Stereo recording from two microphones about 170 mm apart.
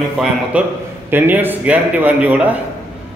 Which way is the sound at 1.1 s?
10° right (ahead or behind).